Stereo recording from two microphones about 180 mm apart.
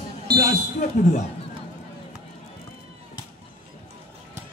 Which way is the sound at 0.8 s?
40° left (ahead or behind).